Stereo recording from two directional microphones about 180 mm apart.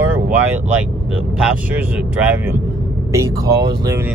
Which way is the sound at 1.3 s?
10° right (ahead or behind).